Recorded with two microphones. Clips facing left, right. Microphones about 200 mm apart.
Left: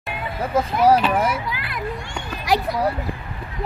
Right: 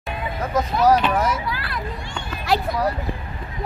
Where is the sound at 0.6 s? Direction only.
30° left (ahead or behind).